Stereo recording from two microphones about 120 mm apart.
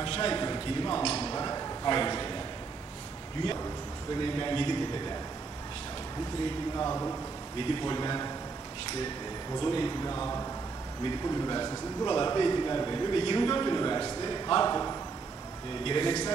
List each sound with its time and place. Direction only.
0.0 s a sound: 45° left (ahead or behind)
4.1 s a man's voice: 40° left (ahead or behind)
6.8 s speech: 25° left (ahead or behind)
7.5 s a man's voice: 45° left (ahead or behind)
9.6 s a man's voice: 40° left (ahead or behind)
10.1 s a man's voice: 25° left (ahead or behind)
15.8 s speech: 45° left (ahead or behind)